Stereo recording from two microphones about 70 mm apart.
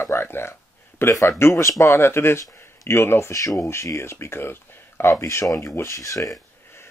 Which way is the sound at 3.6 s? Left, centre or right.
Left.